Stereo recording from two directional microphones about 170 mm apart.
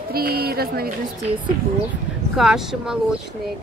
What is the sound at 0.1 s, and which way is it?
Speech, 65° right (ahead or behind).